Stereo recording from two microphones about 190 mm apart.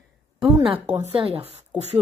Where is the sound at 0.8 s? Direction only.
35° right (ahead or behind).